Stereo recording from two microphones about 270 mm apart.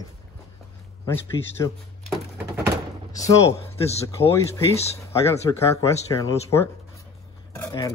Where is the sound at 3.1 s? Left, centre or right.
Centre.